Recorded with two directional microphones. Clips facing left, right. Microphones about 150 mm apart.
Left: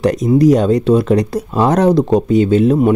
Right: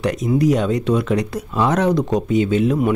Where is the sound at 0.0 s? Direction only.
35° left (ahead or behind).